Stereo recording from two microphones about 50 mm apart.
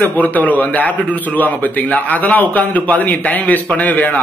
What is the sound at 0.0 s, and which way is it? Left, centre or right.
A man's voice, left.